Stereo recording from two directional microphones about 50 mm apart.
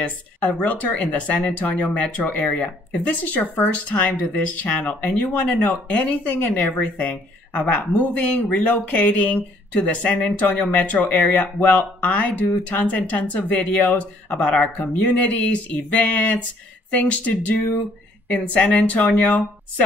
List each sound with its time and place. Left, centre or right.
0.0 s speech: left